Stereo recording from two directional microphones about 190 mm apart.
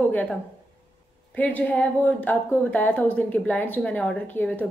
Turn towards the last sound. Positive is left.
turn(degrees=10)  # may be behind; listen again after turning